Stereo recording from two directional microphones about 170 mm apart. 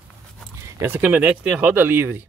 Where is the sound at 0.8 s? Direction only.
10° right (ahead or behind).